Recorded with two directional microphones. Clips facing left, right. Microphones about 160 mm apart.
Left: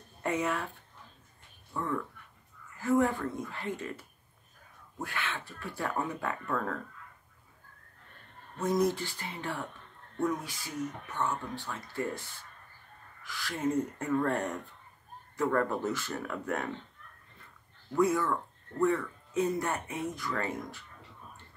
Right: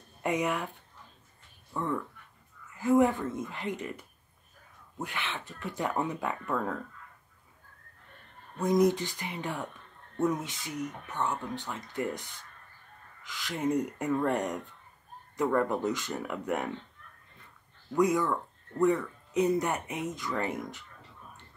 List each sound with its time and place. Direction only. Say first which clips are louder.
0.2 s speech: right 2 dB; 15° right (ahead or behind)
1.7 s speech: right 1 dB; 15° right (ahead or behind)
5.0 s speech: even; 20° right (ahead or behind)
8.5 s speech: right 3 dB; 15° right (ahead or behind)
17.9 s speech: right 1 dB; 15° right (ahead or behind)